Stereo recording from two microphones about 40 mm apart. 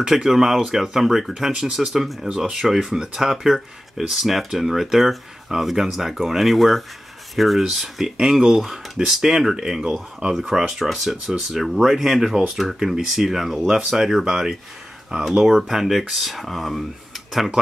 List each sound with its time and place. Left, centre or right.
0.1 s speech: centre
7.8 s speech: centre
13.6 s speech: centre
13.8 s speech: centre